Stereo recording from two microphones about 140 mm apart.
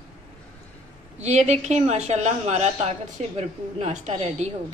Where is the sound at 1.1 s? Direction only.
55° right (ahead or behind).